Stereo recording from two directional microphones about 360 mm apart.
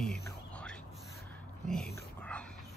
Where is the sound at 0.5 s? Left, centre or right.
Centre.